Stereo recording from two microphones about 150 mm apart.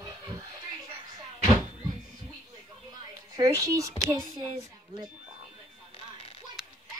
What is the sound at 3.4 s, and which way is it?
Speech, 20° right (ahead or behind).